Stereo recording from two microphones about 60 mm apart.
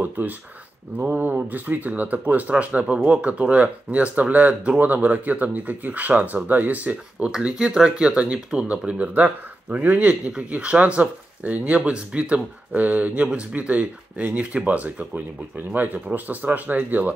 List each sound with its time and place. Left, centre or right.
0.9 s speech: right
7.2 s speech: centre; by 17.1 s right